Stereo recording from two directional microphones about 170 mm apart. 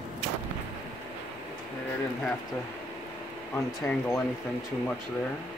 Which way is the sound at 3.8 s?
10° left (ahead or behind).